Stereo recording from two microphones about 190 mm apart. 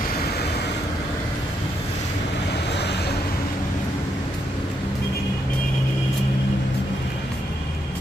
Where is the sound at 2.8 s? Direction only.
60° left (ahead or behind).